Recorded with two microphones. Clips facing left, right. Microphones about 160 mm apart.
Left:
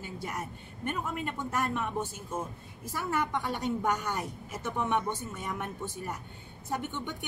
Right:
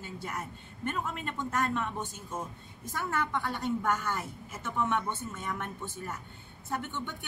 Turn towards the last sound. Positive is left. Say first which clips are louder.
# left 1 dB
turn(degrees=15)  # may be behind; listen again after turning